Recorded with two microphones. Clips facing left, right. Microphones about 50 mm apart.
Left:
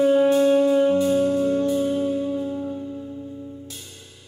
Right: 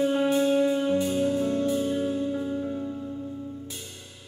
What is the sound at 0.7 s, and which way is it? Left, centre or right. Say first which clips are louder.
Music: left 7 dB; centre.